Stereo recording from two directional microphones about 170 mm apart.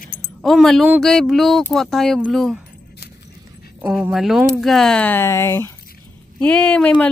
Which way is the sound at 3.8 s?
5° right (ahead or behind).